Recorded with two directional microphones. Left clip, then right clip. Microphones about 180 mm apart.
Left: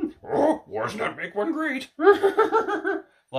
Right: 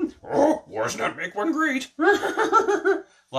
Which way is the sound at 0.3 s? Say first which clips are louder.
Right 1 dB; 20° left (ahead or behind).